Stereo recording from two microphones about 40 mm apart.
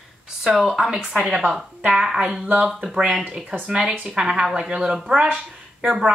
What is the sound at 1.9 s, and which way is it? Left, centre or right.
A woman's voice, centre.